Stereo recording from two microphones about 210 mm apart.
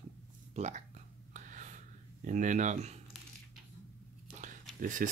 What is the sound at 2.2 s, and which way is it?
Speech, 35° right (ahead or behind).